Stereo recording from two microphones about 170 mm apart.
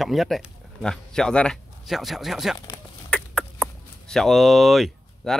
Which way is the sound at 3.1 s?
5° left (ahead or behind).